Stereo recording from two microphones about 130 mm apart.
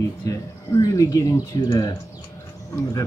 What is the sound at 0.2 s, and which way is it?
Speech, 25° left (ahead or behind).